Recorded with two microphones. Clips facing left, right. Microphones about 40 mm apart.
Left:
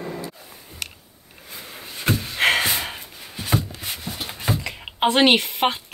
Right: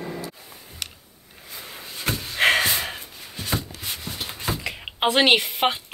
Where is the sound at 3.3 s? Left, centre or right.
Centre.